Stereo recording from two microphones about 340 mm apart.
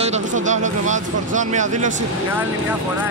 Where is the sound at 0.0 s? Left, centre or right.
Right.